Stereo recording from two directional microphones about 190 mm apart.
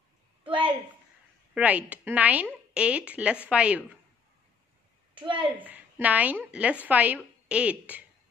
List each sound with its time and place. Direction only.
0.4 s a sound: 25° right (ahead or behind)
1.5 s a woman's voice: 10° right (ahead or behind)
5.2 s a child's voice: 25° right (ahead or behind)
5.6 s a woman's voice: 10° right (ahead or behind)